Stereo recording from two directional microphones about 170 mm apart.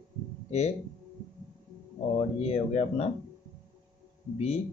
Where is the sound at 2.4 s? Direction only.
40° left (ahead or behind).